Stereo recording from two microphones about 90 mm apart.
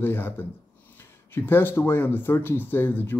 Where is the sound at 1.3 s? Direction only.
25° left (ahead or behind).